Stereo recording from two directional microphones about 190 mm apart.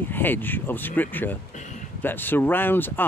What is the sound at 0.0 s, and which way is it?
Speech, 10° left (ahead or behind).